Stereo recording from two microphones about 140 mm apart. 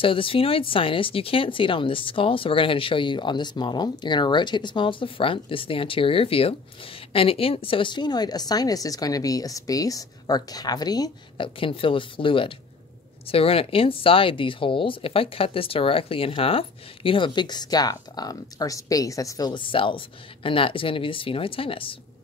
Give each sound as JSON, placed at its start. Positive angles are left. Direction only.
{"t": 0.0, "sound": "a woman's voice", "side_deg": 40}